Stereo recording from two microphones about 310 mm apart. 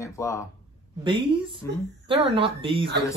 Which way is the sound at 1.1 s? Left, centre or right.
Centre.